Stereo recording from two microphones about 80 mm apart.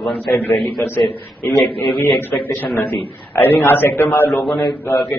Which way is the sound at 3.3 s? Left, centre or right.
Left.